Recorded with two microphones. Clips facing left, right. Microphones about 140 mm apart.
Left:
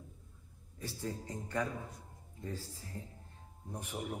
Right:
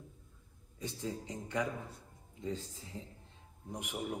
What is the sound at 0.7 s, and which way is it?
A man's voice, 15° right (ahead or behind).